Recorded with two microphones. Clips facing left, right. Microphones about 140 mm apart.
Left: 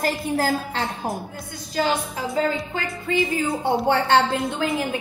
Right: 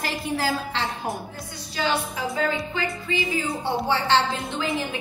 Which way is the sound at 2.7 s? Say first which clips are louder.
Left 3 dB; 45° left (ahead or behind).